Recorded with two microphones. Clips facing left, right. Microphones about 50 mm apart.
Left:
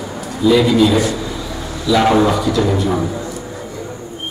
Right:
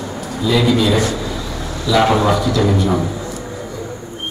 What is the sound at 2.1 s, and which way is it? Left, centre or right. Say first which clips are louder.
A man's voice: left 1 dB; centre.